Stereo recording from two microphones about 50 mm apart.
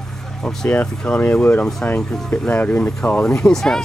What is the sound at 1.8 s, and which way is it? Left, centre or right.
Speech, left.